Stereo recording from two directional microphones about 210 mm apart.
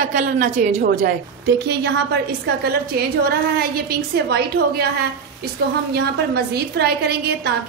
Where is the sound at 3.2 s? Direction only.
45° right (ahead or behind).